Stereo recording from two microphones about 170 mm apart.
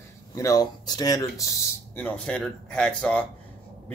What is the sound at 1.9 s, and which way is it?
Speech, 10° left (ahead or behind).